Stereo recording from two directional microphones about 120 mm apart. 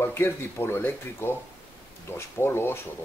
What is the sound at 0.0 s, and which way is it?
A man's voice, 20° left (ahead or behind).